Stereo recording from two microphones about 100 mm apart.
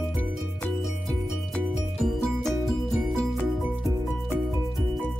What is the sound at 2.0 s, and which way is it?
Music, 5° left (ahead or behind).